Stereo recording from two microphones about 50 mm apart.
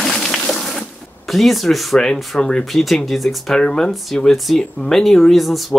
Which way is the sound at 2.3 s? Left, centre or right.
Left.